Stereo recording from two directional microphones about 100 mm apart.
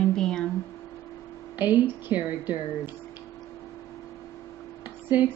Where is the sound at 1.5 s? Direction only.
20° right (ahead or behind).